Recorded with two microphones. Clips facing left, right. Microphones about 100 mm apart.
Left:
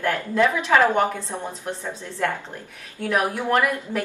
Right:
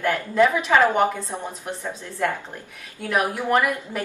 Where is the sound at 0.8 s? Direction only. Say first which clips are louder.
Right 1 dB; 15° right (ahead or behind).